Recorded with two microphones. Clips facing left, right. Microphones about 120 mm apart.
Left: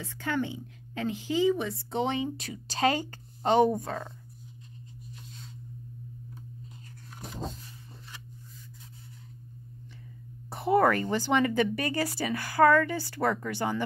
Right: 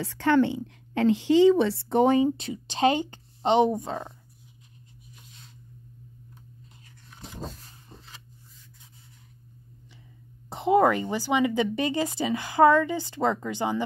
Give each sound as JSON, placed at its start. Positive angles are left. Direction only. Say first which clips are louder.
{"t": 0.0, "sound": "a woman's voice", "louder": "right 9 dB", "side_deg": -80}
{"t": 10.5, "sound": "speech", "louder": "right 3 dB", "side_deg": -15}